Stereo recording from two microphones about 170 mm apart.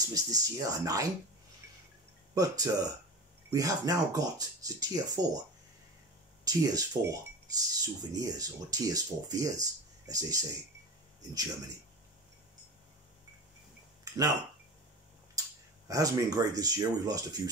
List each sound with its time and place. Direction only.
0.0 s speech: 20° right (ahead or behind)
2.3 s speech: 20° right (ahead or behind)
6.4 s speech: 20° right (ahead or behind)
15.9 s speech: 20° right (ahead or behind)